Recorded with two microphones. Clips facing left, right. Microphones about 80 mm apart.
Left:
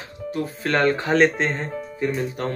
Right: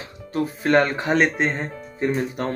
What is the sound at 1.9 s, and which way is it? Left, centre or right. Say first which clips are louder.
Speech: right 2 dB; right.